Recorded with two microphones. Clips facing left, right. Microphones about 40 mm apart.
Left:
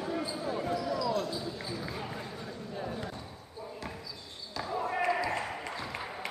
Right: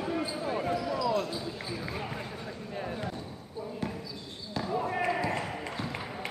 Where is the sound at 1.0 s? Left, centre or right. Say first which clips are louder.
Right 2 dB; right.